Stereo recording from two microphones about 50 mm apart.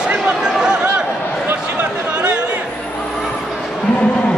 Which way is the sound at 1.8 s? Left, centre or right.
Right.